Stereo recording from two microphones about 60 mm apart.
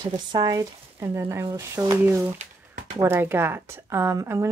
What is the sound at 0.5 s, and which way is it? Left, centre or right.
Speech, right.